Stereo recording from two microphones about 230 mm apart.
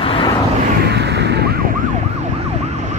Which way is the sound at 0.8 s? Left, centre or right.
Right.